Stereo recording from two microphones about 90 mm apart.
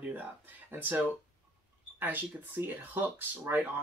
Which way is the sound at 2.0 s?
20° right (ahead or behind).